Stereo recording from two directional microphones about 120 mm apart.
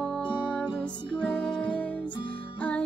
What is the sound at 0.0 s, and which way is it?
Music, 10° left (ahead or behind).